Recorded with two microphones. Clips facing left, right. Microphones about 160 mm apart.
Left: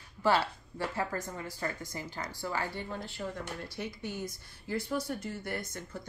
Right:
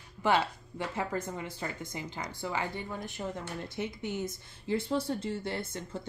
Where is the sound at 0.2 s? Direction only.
20° right (ahead or behind).